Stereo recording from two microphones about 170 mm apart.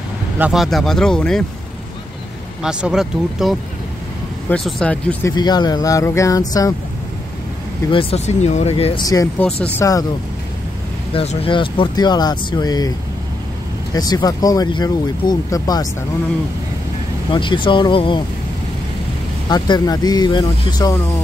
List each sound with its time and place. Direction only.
0.4 s speech: centre (ahead or behind)
2.6 s speech: 5° right (ahead or behind)
5.3 s speech: 25° left (ahead or behind)
7.9 s speech: 35° left (ahead or behind)
9.0 s speech: 20° left (ahead or behind)
11.1 s speech: 30° left (ahead or behind)
13.9 s speech: 25° left (ahead or behind)
17.3 s speech: 30° left (ahead or behind)
19.5 s speech: 25° left (ahead or behind)